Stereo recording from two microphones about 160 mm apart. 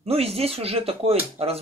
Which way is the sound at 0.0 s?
40° right (ahead or behind).